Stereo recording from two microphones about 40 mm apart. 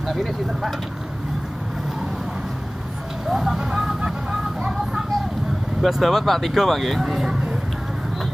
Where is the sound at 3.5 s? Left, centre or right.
Centre.